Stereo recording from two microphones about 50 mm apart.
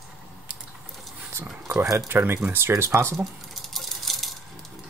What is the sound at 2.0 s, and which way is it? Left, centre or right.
Speech, right.